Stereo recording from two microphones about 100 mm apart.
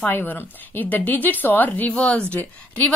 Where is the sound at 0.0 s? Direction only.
20° left (ahead or behind).